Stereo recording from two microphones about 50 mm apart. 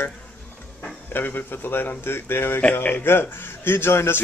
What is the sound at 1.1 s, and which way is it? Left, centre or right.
A man's voice, left.